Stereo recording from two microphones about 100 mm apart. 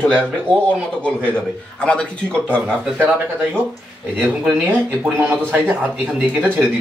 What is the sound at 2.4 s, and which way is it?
Speech, 20° right (ahead or behind).